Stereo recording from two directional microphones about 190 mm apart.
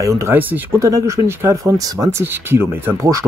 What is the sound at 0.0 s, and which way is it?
Speech, 15° right (ahead or behind).